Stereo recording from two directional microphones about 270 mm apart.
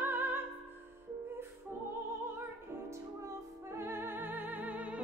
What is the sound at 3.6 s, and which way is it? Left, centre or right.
Music, centre.